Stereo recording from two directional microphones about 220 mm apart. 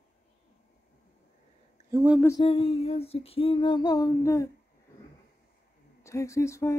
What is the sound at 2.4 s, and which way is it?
Female singing, 25° left (ahead or behind).